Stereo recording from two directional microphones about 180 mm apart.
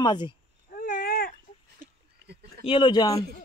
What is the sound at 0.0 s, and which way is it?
Speech, 25° left (ahead or behind).